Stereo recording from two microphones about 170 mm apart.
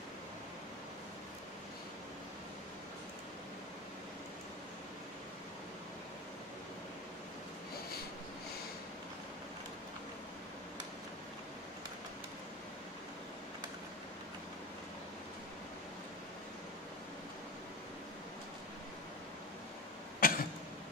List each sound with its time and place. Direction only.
20.2 s cough: 55° left (ahead or behind)